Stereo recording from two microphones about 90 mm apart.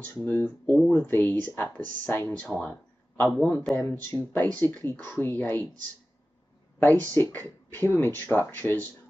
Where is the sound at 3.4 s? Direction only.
15° left (ahead or behind).